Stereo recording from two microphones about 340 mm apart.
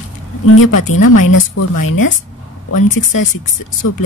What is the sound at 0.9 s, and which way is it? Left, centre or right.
Speech, left.